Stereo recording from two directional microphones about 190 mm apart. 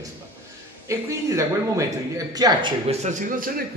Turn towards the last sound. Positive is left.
turn(degrees=-45)  # may be behind; listen again after turning